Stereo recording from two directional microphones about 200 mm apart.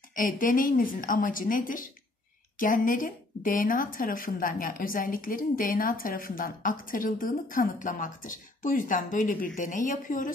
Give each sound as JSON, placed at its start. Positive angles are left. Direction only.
{"t": 0.1, "sound": "a woman's voice", "side_deg": 45}